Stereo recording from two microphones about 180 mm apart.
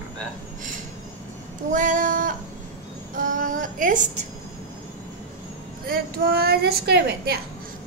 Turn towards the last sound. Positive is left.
turn(degrees=-65)  # may be behind; listen again after turning